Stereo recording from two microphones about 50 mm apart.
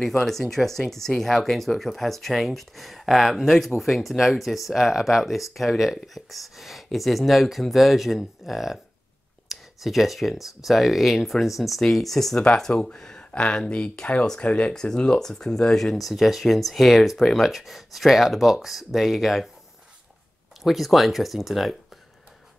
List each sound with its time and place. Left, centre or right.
0.0 s speech: centre
20.6 s speech: centre